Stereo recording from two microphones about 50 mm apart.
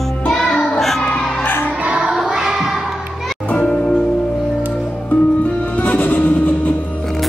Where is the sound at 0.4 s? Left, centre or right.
Centre.